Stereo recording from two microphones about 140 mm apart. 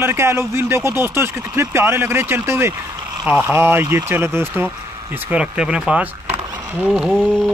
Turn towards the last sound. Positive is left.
turn(degrees=0)  # may be behind; listen again after turning